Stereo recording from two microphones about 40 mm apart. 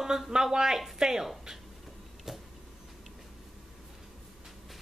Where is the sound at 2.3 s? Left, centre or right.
Centre.